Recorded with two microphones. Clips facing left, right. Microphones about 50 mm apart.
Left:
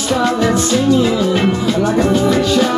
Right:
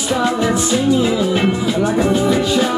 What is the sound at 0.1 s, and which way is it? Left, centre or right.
Music, centre.